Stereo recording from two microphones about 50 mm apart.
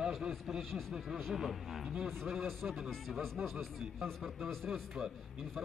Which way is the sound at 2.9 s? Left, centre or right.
Centre.